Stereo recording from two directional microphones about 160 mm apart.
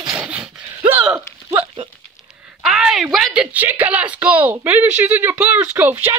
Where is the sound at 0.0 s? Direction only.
5° right (ahead or behind).